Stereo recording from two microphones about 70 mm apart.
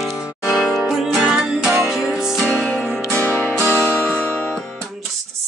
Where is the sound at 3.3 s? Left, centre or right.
Left.